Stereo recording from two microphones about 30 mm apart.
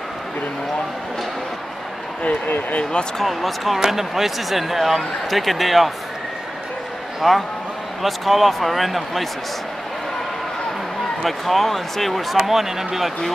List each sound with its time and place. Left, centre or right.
2.8 s speech: left
3.3 s speech: centre
7.2 s speech: centre
11.2 s speech: centre
12.4 s speech: centre